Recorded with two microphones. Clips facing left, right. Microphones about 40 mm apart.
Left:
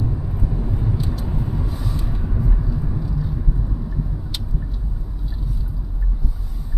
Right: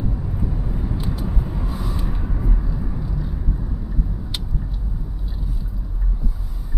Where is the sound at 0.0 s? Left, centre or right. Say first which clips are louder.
Even; centre.